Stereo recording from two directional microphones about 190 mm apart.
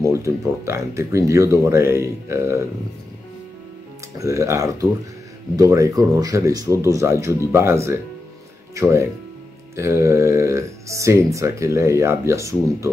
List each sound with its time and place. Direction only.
0.0 s speech: 15° right (ahead or behind)
4.2 s speech: 15° right (ahead or behind)